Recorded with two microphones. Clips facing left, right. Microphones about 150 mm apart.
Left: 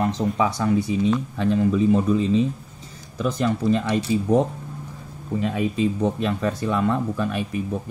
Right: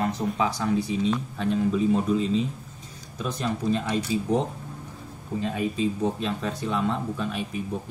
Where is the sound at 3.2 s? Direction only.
80° left.